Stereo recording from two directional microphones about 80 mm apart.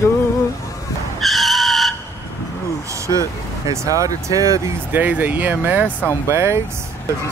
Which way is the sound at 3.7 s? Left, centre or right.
Right.